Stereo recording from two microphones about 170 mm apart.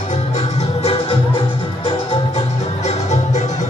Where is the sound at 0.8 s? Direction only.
35° left (ahead or behind).